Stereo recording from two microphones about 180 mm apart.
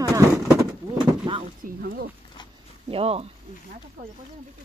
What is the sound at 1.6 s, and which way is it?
Speech, 55° right (ahead or behind).